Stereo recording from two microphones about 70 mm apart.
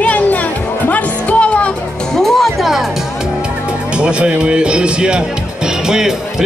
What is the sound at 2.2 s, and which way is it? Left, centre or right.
Music, centre.